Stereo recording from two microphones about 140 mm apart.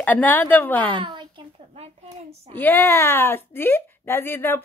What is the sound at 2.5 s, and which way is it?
Speech, 15° left (ahead or behind).